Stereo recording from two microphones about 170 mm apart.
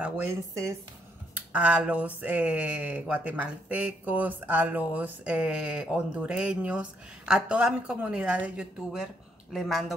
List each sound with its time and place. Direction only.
0.0 s speech: 15° right (ahead or behind); by 9.9 s centre (ahead or behind)